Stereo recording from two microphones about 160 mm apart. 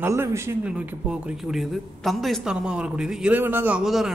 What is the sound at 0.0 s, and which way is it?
A man's voice, 15° right (ahead or behind).